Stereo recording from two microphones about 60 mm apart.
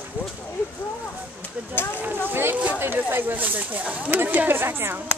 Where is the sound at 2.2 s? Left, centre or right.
Right.